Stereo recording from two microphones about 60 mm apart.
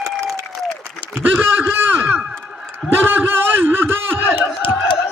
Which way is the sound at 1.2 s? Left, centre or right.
Right.